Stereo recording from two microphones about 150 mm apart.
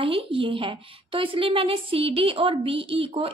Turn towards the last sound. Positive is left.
turn(degrees=-40)  # may be behind; listen again after turning